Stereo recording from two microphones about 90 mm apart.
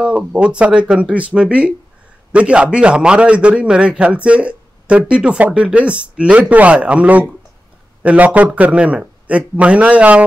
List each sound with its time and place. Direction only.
0.0 s a man's voice: 10° right (ahead or behind)